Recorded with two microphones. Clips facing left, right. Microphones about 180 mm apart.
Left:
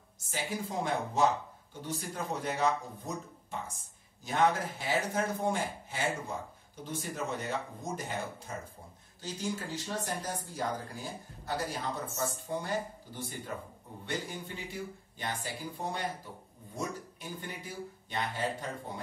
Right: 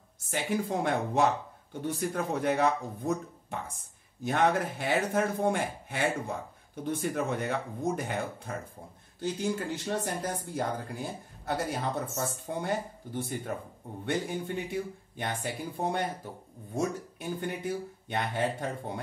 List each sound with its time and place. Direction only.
0.2 s speech: 60° right (ahead or behind)
17.4 s speech: 60° right (ahead or behind)